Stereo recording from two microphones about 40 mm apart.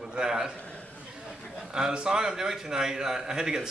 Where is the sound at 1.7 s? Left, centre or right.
Centre.